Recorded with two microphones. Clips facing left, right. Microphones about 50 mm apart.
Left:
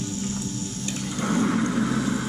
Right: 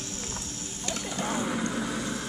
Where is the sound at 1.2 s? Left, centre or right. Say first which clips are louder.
Left 7 dB; centre.